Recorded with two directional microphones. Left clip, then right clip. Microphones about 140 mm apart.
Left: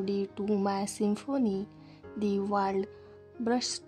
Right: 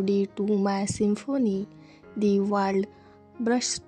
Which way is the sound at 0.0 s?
25° right (ahead or behind).